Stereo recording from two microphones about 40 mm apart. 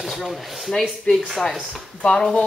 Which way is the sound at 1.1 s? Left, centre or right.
Left.